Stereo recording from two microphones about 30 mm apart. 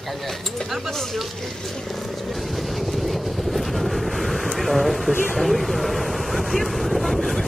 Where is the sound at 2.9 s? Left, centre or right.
Centre.